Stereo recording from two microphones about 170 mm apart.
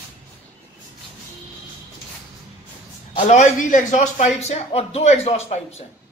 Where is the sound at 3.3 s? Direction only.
45° left (ahead or behind).